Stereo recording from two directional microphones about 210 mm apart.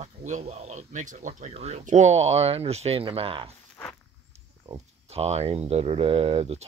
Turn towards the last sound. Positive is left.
turn(degrees=-30)  # may be behind; listen again after turning